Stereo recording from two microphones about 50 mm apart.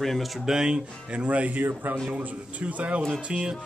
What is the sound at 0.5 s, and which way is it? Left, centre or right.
Speech, centre.